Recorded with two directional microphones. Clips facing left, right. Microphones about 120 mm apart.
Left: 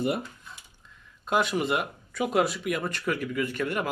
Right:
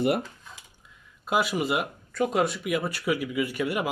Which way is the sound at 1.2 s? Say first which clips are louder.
Even; 5° right (ahead or behind).